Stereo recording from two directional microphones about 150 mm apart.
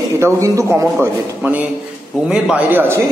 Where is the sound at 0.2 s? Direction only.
20° right (ahead or behind).